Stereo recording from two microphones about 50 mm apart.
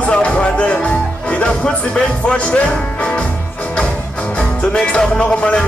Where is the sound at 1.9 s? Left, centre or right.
Left.